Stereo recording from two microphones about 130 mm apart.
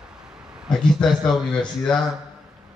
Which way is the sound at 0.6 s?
5° left (ahead or behind).